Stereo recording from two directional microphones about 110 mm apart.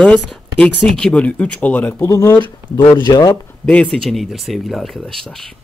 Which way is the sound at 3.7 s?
10° left (ahead or behind).